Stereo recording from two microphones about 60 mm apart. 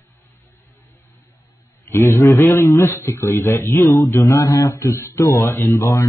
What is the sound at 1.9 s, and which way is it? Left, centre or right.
Speech, left.